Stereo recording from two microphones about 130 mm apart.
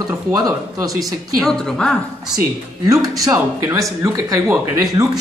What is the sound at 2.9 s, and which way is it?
Speech, 25° right (ahead or behind).